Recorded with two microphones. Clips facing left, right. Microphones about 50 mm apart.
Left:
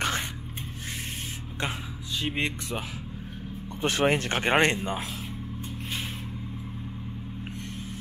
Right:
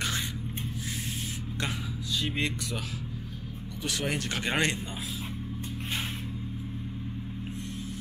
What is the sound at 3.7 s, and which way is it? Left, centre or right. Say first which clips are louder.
Speech: left 8 dB; left.